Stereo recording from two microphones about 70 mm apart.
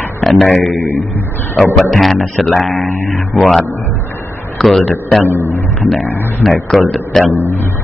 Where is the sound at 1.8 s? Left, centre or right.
Centre.